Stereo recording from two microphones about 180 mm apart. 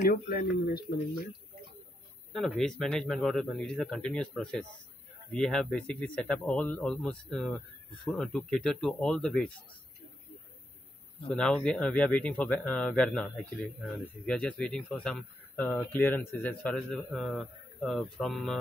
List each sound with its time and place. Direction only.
0.0 s speech: 50° left (ahead or behind)
2.3 s speech: 5° left (ahead or behind)
11.2 s speech: 5° left (ahead or behind)